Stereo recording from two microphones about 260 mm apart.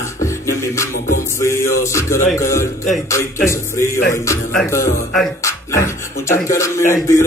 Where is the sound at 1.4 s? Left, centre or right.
Centre.